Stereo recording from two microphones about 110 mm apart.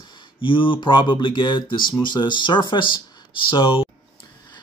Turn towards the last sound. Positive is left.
turn(degrees=50)  # may be behind; listen again after turning